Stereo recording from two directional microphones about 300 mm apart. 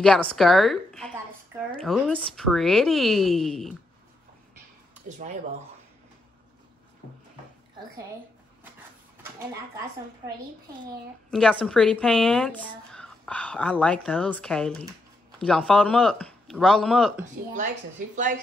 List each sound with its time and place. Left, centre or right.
0.0 s speech: centre
11.2 s speech: centre
18.1 s speech: right